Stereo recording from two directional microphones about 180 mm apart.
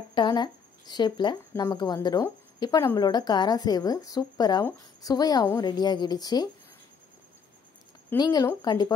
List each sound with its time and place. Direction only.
0.1 s speech: 25° left (ahead or behind)
8.2 s speech: 20° left (ahead or behind)